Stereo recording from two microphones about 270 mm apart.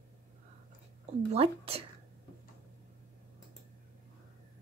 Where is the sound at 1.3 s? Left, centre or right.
Right.